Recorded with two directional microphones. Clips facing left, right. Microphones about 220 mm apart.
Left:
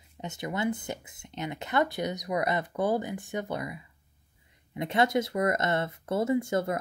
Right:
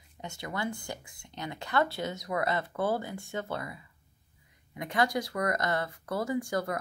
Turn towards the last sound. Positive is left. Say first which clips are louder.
# left 4 dB
turn(degrees=25)  # may be behind; listen again after turning